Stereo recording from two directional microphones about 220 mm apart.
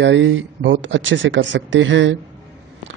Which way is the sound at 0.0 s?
55° right (ahead or behind).